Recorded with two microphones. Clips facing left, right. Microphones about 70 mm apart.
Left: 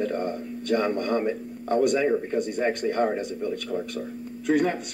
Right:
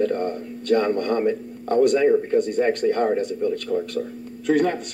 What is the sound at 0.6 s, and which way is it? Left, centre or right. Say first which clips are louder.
A man's voice: right 4 dB; right.